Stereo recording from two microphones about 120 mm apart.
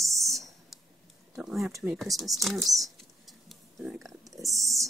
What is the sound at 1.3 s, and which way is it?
Speech, centre (ahead or behind).